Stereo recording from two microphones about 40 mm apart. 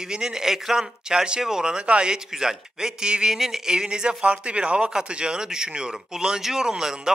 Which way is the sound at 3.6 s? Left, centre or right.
Centre.